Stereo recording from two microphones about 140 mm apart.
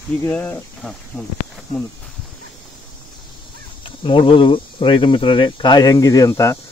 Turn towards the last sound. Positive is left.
turn(degrees=20)  # may be behind; listen again after turning